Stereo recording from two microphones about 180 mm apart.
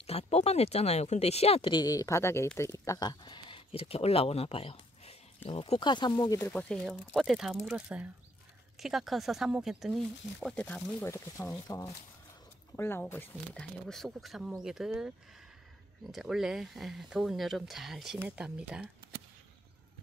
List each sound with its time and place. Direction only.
0.0 s speech: 35° left (ahead or behind)
6.5 s speech: 5° left (ahead or behind)
16.1 s speech: centre (ahead or behind)